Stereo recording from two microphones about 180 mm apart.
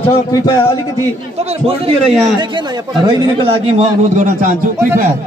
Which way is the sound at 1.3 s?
35° right (ahead or behind).